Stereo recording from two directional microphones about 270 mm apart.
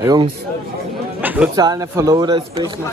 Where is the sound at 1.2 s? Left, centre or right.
Centre.